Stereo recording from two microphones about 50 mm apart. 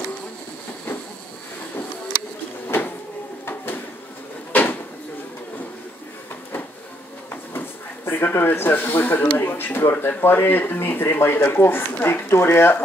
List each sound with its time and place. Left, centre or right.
2.7 s vehicle: left
3.4 s a sound: left
4.5 s drawer open or close: left
7.5 s speech: left